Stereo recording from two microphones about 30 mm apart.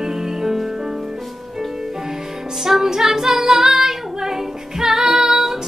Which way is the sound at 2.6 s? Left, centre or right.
Centre.